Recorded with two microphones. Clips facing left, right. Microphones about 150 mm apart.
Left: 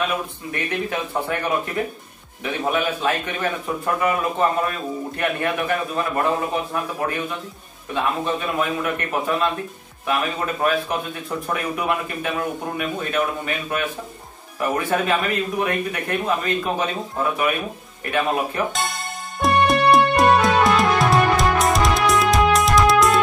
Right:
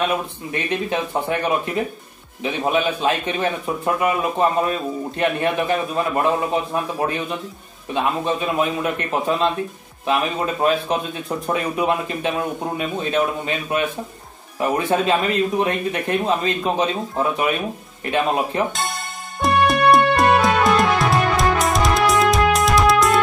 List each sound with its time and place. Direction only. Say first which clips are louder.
0.5 s speech: right 2 dB; 20° right (ahead or behind)
2.4 s speech: right 2 dB; 20° right (ahead or behind)
18.7 s music: even; centre (ahead or behind)